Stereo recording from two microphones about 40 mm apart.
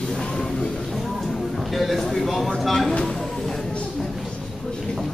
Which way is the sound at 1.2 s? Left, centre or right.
Centre.